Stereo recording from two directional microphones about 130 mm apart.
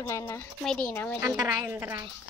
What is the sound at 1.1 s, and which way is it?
Speech, 25° right (ahead or behind).